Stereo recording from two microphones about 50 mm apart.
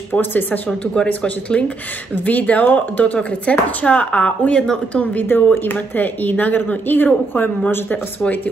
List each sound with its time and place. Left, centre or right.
0.1 s speech: left
1.0 s speech: left
5.3 s speech: left